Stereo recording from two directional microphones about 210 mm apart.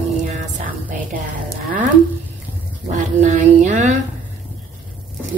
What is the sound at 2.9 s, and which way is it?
A woman's voice, 35° right (ahead or behind).